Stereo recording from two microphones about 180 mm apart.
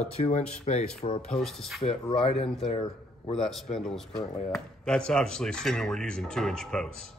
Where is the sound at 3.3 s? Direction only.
Centre (ahead or behind).